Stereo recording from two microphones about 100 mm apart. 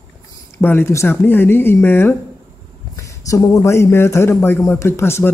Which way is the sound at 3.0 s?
30° left (ahead or behind).